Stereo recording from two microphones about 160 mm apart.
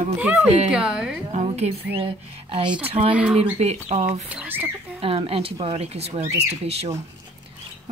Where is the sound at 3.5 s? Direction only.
45° right (ahead or behind).